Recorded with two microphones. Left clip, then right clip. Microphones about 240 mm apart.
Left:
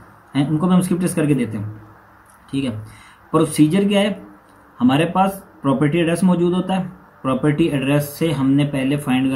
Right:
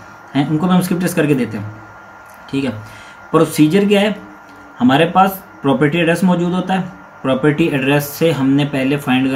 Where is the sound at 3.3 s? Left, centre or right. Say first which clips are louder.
Right 4 dB; centre.